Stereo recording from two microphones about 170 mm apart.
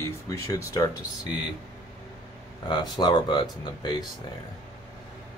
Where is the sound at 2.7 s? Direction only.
25° left (ahead or behind).